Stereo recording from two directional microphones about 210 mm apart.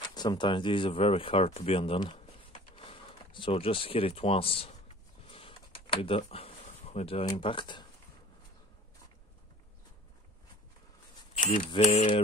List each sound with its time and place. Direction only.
0.1 s speech: 20° left (ahead or behind)
5.3 s computer keyboard: 25° left (ahead or behind)
11.3 s a sound: 40° left (ahead or behind)
11.7 s speech: 30° left (ahead or behind)